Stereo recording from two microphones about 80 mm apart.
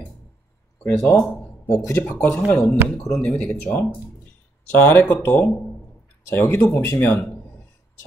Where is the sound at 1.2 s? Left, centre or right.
Left.